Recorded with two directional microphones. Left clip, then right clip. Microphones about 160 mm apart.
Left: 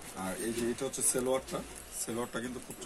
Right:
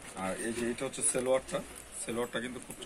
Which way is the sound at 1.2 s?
15° right (ahead or behind).